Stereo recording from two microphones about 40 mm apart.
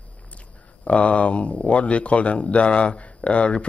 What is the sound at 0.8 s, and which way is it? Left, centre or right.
A man's voice, left.